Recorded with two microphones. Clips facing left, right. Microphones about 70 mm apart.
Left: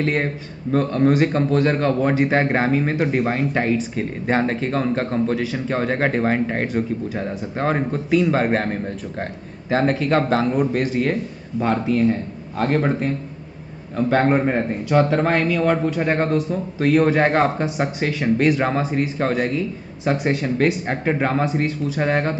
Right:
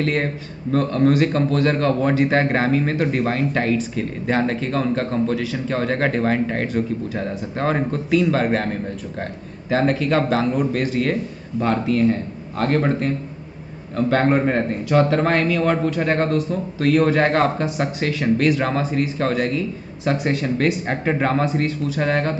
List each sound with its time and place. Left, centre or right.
0.1 s a man's voice: centre
3.9 s speech: left; by 8.3 s centre
9.2 s speech: left
10.7 s a man's voice: centre
20.3 s a man's voice: centre; by 22.3 s left